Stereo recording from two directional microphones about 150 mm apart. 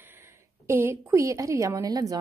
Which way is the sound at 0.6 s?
20° right (ahead or behind).